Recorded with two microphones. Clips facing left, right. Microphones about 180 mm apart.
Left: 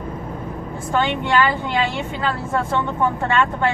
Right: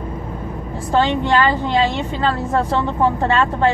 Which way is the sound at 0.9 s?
35° right (ahead or behind).